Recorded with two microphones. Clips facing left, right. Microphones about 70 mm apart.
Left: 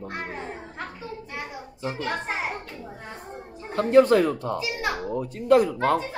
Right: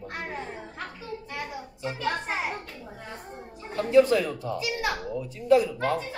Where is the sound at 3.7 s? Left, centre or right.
Left.